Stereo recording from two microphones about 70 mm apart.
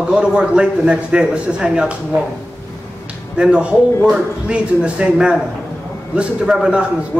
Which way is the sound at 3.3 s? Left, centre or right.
Centre.